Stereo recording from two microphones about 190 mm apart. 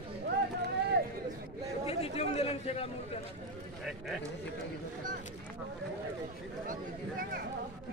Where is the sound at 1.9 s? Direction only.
35° left (ahead or behind).